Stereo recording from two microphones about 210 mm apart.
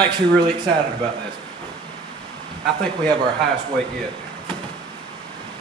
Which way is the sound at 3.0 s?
20° right (ahead or behind).